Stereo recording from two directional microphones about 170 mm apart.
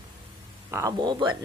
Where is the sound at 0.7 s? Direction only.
20° right (ahead or behind).